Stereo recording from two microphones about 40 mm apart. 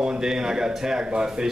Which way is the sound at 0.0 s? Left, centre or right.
Centre.